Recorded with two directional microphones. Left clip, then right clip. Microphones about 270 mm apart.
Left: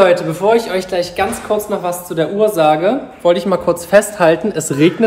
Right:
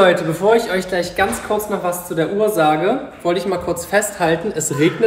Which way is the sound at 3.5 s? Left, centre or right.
Left.